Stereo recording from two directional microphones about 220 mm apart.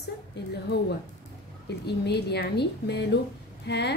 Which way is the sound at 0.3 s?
50° left (ahead or behind).